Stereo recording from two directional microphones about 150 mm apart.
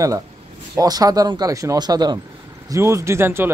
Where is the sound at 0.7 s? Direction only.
25° right (ahead or behind).